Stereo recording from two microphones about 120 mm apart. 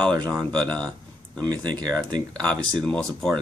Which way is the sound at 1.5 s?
35° right (ahead or behind).